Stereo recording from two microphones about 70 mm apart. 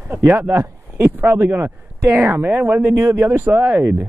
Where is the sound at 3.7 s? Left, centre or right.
Right.